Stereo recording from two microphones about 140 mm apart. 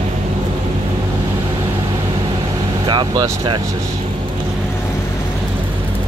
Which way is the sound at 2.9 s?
35° right (ahead or behind).